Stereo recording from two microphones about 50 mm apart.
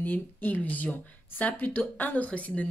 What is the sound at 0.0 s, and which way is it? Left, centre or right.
A man's voice, left.